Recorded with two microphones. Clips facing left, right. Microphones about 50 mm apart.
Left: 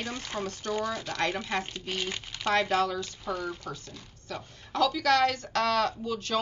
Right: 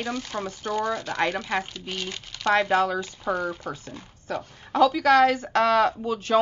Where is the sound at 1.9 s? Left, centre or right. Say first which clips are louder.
Left 1 dB; centre.